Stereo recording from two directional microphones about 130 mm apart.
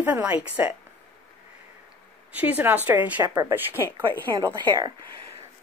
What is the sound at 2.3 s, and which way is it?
Speech, 10° right (ahead or behind).